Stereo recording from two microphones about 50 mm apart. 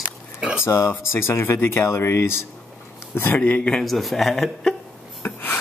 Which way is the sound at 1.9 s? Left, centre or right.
Left.